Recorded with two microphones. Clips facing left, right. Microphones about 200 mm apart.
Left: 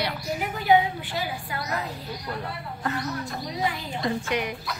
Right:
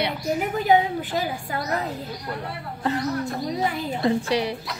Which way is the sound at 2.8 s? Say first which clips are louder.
Right 6 dB; 30° right (ahead or behind).